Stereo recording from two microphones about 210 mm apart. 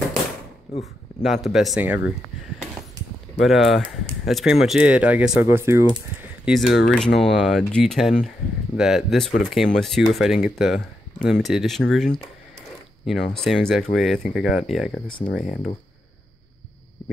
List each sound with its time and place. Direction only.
1.2 s speech: centre (ahead or behind)
3.3 s speech: centre (ahead or behind)
6.4 s speech: centre (ahead or behind)
15.0 s speech: 25° left (ahead or behind)